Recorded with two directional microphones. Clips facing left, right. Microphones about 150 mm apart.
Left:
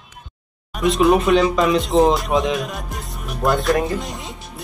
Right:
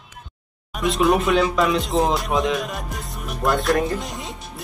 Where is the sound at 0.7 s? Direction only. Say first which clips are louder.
Left 3 dB; centre (ahead or behind).